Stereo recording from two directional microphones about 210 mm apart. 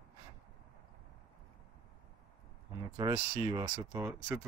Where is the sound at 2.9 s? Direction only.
20° right (ahead or behind).